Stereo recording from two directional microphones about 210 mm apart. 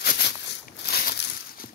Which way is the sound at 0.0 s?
50° left (ahead or behind).